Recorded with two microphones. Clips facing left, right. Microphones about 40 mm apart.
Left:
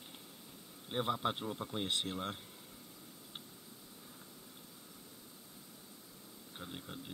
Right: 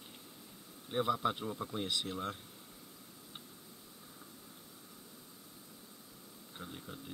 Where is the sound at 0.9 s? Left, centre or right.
Left.